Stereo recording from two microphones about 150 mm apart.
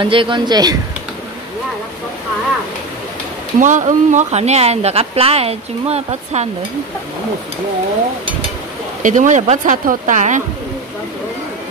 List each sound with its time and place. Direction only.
0.0 s speech: 35° right (ahead or behind)
3.5 s speech: 55° right (ahead or behind)
9.0 s speech: 55° right (ahead or behind)